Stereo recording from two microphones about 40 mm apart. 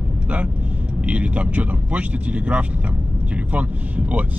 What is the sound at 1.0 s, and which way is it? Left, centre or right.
Speech, right.